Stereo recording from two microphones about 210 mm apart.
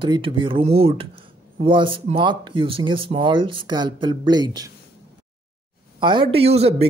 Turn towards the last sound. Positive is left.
turn(degrees=-30)  # may be behind; listen again after turning